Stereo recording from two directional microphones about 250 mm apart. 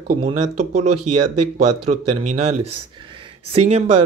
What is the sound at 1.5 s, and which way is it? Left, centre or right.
Speech, right.